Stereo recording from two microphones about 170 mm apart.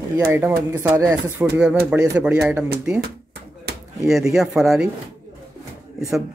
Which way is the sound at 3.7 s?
70° right (ahead or behind).